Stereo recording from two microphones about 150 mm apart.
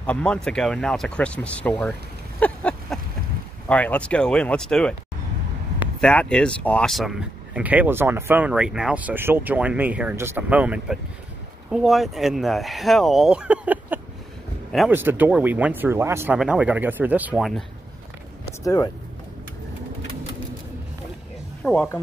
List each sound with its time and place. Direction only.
0.0 s speech: 5° left (ahead or behind)
2.4 s a sound: 10° left (ahead or behind)
3.6 s speech: 10° left (ahead or behind)
5.9 s speech: 5° left (ahead or behind); by 17.5 s 10° right (ahead or behind)
18.6 s speech: 20° left (ahead or behind)
21.6 s a woman's voice: 15° left (ahead or behind)